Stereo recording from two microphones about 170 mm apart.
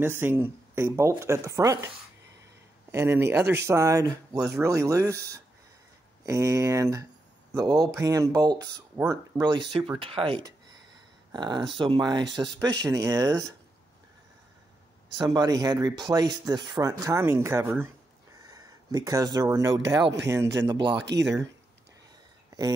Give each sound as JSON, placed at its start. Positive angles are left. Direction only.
{"t": 0.0, "sound": "speech", "side_deg": -15}
{"t": 2.9, "sound": "speech", "side_deg": -15}
{"t": 15.1, "sound": "speech", "side_deg": -25}
{"t": 21.0, "sound": "speech", "side_deg": -90}